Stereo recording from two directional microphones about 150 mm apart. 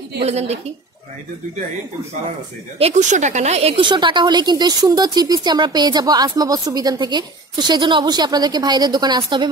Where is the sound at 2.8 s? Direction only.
50° right (ahead or behind).